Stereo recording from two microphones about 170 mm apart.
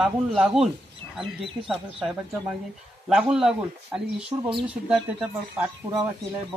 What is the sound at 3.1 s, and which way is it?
Speech, 5° right (ahead or behind).